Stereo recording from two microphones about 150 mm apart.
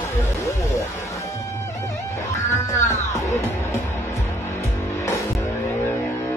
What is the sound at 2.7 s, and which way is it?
Music, 20° left (ahead or behind).